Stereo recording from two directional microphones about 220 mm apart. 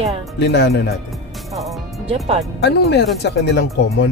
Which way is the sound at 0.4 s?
50° left (ahead or behind).